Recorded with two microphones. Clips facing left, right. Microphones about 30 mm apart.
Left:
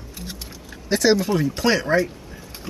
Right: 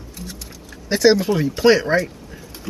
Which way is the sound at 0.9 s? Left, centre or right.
Right.